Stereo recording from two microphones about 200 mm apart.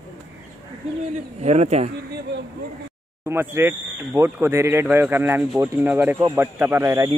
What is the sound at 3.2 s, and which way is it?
Speech, 10° right (ahead or behind).